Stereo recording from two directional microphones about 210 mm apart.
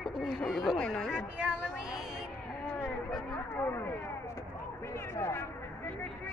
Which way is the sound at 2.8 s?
5° left (ahead or behind).